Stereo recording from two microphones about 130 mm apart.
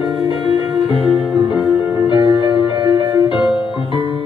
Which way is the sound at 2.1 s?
35° right (ahead or behind).